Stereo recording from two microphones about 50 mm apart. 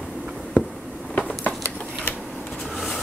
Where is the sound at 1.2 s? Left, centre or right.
Left.